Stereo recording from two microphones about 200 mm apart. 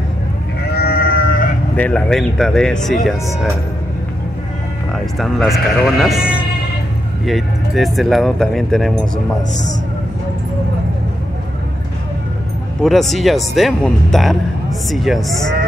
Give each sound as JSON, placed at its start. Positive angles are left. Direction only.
{"t": 0.7, "sound": "sheep", "side_deg": 50}
{"t": 1.8, "sound": "speech", "side_deg": 5}
{"t": 4.9, "sound": "speech", "side_deg": 0}
{"t": 7.2, "sound": "speech", "side_deg": 0}
{"t": 12.8, "sound": "speech", "side_deg": 0}